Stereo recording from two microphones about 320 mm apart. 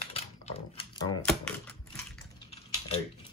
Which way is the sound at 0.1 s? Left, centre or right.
Centre.